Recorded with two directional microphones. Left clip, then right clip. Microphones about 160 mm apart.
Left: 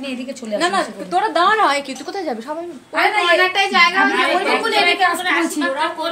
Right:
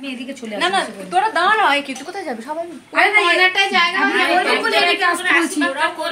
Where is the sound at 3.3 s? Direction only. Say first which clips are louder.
Even; 70° right (ahead or behind).